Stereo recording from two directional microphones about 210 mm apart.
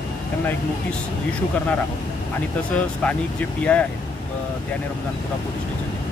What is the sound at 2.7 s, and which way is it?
Speech, 5° left (ahead or behind).